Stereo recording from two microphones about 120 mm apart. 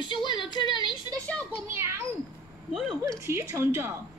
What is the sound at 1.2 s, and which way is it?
Speech, 10° left (ahead or behind).